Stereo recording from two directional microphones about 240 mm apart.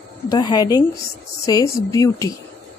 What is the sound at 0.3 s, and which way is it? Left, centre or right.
Speech, centre.